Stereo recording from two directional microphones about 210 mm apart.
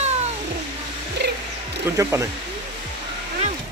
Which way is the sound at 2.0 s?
15° right (ahead or behind).